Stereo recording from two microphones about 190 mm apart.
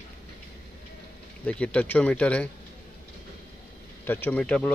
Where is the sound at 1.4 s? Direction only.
5° left (ahead or behind).